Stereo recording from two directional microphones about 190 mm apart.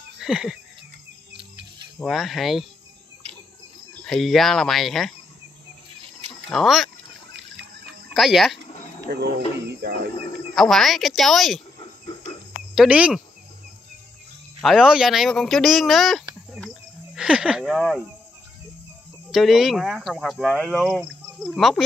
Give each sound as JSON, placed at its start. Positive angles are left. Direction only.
{"t": 0.2, "sound": "a sound", "side_deg": -5}
{"t": 2.0, "sound": "speech", "side_deg": 0}
{"t": 3.2, "sound": "cricket", "side_deg": -30}
{"t": 4.0, "sound": "speech", "side_deg": 0}
{"t": 6.5, "sound": "speech", "side_deg": 0}
{"t": 8.1, "sound": "speech", "side_deg": 0}
{"t": 9.7, "sound": "a sound", "side_deg": -60}
{"t": 10.5, "sound": "speech", "side_deg": 0}
{"t": 12.7, "sound": "speech", "side_deg": -5}
{"t": 14.6, "sound": "speech", "side_deg": 0}
{"t": 19.3, "sound": "speech", "side_deg": 0}